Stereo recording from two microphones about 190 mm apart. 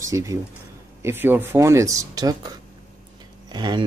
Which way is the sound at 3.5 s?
25° right (ahead or behind).